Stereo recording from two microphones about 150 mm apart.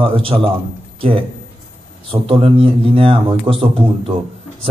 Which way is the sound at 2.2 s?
40° right (ahead or behind).